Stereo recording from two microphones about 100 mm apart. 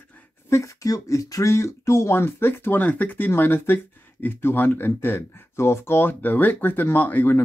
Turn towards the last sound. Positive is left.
turn(degrees=15)  # may be behind; listen again after turning